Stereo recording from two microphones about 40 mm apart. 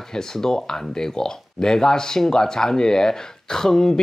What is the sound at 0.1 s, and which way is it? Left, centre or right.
Speech, centre.